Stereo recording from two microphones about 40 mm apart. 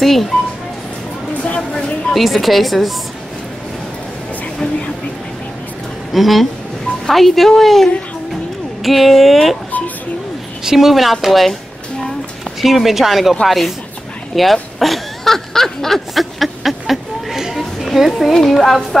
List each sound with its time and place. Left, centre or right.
0.0 s speech: centre
1.4 s speech: left
2.1 s speech: centre
6.1 s speech: centre
10.6 s speech: centre
12.6 s speech: centre
14.3 s a sound: centre
17.8 s music: centre
18.5 s speech: centre